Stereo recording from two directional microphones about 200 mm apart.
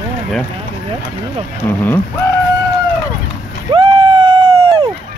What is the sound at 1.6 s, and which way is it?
Speech, 10° left (ahead or behind).